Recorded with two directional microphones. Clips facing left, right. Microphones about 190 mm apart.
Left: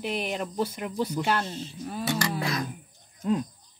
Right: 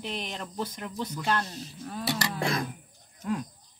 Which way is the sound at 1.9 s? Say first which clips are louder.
Left 3 dB; 5° left (ahead or behind).